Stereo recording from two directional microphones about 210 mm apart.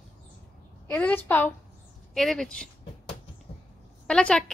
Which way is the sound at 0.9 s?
5° left (ahead or behind).